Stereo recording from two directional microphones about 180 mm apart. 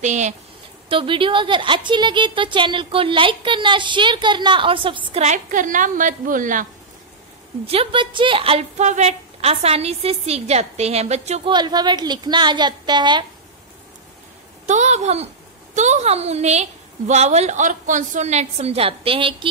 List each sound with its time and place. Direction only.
0.0 s a woman's voice: 40° right (ahead or behind)
0.8 s speech: 30° right (ahead or behind); by 6.7 s 45° right (ahead or behind)
7.6 s a woman's voice: 30° right (ahead or behind)
11.5 s speech: 25° right (ahead or behind)
14.7 s a woman's voice: 40° right (ahead or behind)